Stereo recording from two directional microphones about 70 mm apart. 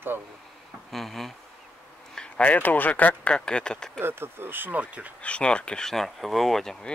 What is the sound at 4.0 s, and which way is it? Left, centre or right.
Speech, right.